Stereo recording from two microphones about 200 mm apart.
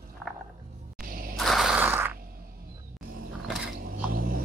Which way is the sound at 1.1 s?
45° right (ahead or behind).